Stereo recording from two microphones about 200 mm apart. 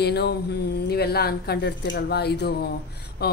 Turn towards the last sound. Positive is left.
turn(degrees=50)  # may be behind; listen again after turning